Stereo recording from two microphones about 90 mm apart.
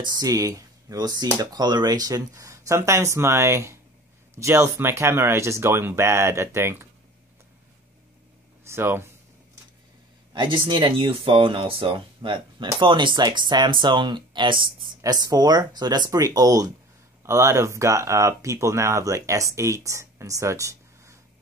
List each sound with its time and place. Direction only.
0.0 s speech: 45° right (ahead or behind); by 6.9 s 30° right (ahead or behind)
8.6 s speech: 25° right (ahead or behind)
10.3 s speech: 60° right (ahead or behind)
15.0 s speech: 45° right (ahead or behind)
17.2 s speech: 35° right (ahead or behind)